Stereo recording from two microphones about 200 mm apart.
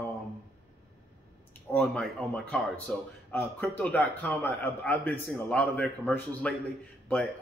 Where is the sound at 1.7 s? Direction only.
5° left (ahead or behind).